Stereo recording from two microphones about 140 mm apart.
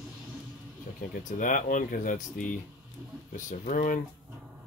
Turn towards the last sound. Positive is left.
turn(degrees=65)  # may be behind; listen again after turning